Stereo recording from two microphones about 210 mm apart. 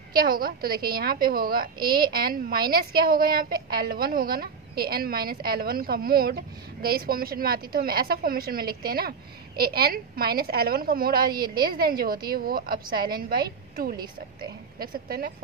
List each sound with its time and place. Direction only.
0.1 s a woman's voice: 45° right (ahead or behind)
13.9 s speech: 20° right (ahead or behind)
14.8 s a woman's voice: 45° right (ahead or behind)